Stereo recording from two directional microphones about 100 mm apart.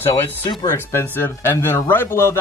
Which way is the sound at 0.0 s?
25° left (ahead or behind).